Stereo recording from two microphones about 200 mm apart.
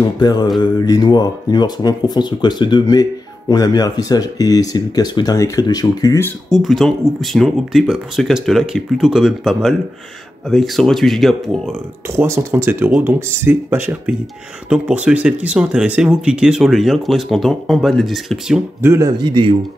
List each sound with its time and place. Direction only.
0.0 s speech: 20° left (ahead or behind)
6.5 s speech: centre (ahead or behind)
12.1 s speech: 10° right (ahead or behind)
18.8 s speech: 15° right (ahead or behind)